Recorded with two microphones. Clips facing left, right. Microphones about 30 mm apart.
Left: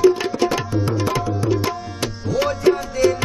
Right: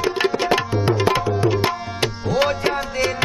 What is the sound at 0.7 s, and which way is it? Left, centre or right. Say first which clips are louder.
Tabla: right 3 dB; right.